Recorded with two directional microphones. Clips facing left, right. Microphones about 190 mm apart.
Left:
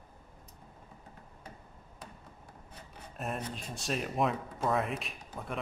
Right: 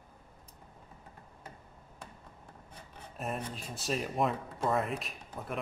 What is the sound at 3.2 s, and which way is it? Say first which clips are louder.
Speech: even; centre (ahead or behind).